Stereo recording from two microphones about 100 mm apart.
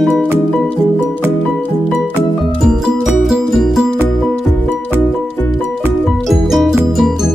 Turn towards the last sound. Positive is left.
turn(degrees=0)  # may be behind; listen again after turning